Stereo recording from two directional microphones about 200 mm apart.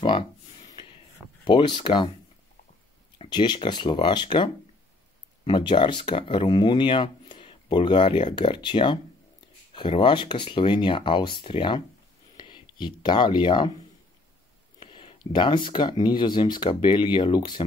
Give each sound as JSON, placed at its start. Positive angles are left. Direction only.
{"t": 1.4, "sound": "speech", "side_deg": 25}
{"t": 3.2, "sound": "speech", "side_deg": 20}
{"t": 14.8, "sound": "speech", "side_deg": 25}